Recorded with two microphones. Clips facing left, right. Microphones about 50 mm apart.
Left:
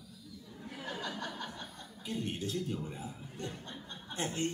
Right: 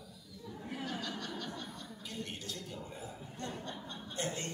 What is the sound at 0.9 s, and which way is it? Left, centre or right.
Chuckle, centre.